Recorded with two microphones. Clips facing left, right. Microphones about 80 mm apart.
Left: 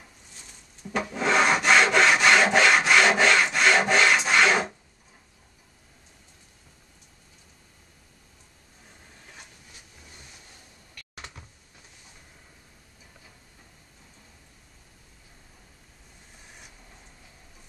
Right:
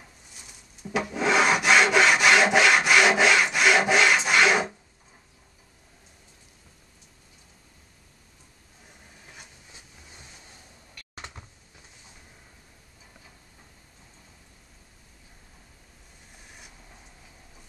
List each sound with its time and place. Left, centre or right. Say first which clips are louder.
0.0 s rub: even; centre
9.2 s train: even; centre
11.1 s a sound: right 2 dB; right